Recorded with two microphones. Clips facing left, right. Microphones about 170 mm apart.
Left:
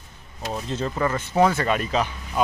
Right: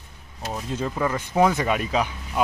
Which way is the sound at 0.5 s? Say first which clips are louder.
Left 1 dB; 5° right (ahead or behind).